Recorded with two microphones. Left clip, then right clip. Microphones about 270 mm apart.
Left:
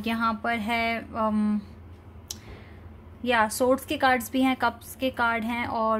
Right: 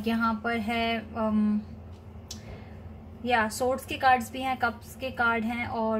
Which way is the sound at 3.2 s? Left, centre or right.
Left.